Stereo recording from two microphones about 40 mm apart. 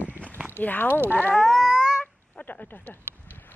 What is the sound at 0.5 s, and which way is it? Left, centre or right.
Speech, left.